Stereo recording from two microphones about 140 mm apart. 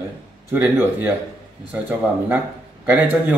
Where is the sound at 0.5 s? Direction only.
15° right (ahead or behind).